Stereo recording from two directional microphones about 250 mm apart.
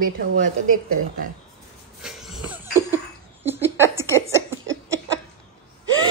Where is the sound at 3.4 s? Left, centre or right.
Centre.